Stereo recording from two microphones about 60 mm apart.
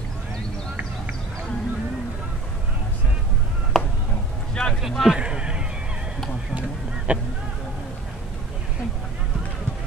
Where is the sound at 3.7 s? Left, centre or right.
Centre.